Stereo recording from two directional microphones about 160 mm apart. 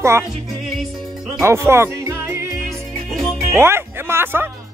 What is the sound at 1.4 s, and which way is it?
Music, 15° right (ahead or behind).